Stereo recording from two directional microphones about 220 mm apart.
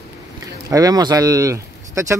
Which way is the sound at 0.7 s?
15° right (ahead or behind).